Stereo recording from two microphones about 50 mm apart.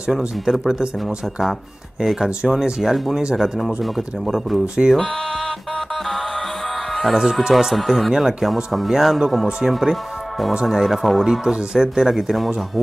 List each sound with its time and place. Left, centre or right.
0.1 s speech: centre
1.0 s speech: centre
2.2 s speech: centre
2.8 s speech: centre
4.8 s speech: centre
7.2 s speech: centre
11.4 s speech: centre